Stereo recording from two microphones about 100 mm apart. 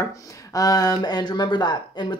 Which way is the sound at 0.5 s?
40° left (ahead or behind).